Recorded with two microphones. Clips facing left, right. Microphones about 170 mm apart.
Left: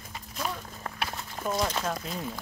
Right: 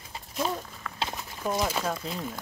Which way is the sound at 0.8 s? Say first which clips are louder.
Left 6 dB; 40° left (ahead or behind).